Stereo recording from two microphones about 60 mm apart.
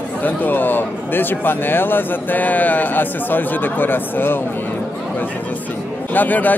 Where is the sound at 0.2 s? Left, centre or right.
Left.